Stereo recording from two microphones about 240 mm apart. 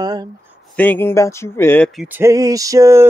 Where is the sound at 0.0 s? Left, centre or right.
Centre.